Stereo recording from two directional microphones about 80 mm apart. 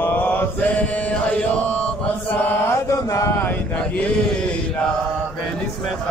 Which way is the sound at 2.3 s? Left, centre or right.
Left.